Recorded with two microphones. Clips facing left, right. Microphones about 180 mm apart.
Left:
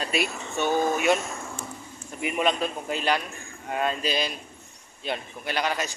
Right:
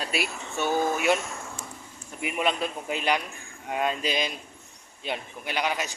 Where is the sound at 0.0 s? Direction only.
5° right (ahead or behind).